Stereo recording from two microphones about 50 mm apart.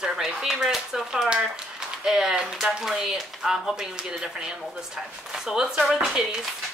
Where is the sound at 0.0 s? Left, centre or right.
Centre.